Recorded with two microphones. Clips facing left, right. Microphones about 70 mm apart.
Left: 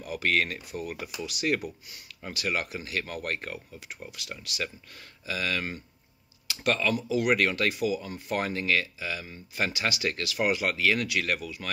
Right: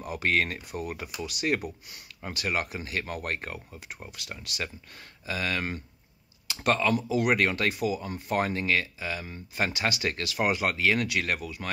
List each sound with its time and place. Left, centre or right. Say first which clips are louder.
0.0 s speech: even; right